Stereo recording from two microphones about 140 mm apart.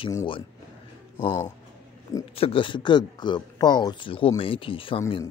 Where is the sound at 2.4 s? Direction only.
40° left (ahead or behind).